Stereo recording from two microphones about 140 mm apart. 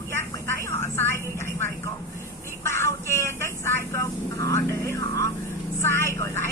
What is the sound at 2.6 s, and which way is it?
Vehicle, 20° left (ahead or behind).